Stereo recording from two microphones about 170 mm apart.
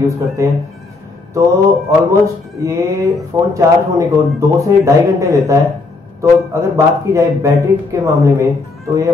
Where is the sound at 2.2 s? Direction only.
20° right (ahead or behind).